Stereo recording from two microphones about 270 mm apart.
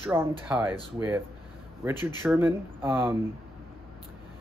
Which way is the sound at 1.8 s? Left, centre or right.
Centre.